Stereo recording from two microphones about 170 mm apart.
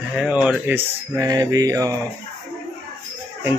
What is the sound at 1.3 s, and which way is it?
Mantra, 20° right (ahead or behind).